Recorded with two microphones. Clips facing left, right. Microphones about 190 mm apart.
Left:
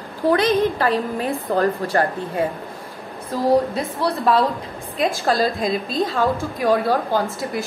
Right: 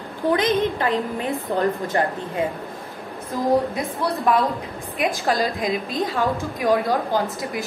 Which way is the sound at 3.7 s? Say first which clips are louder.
Left 2 dB; 15° right (ahead or behind).